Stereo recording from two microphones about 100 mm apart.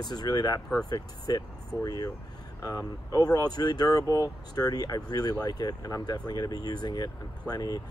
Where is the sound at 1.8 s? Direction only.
40° left (ahead or behind).